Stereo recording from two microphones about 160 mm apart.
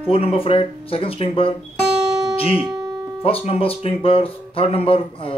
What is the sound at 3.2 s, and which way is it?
Speech, 35° left (ahead or behind).